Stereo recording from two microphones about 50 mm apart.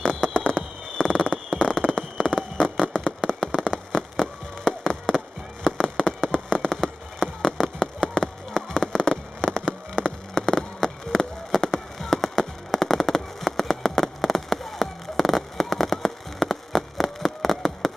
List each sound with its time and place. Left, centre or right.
0.0 s fireworks: centre
1.1 s a sound: centre
1.6 s fireworks: centre
8.8 s rain on surface: centre